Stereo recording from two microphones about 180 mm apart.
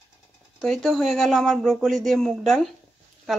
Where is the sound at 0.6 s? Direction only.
Centre (ahead or behind).